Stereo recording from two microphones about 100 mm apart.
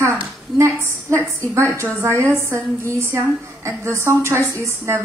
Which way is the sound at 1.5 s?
25° right (ahead or behind).